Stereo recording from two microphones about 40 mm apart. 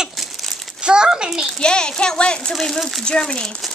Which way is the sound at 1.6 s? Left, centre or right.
Left.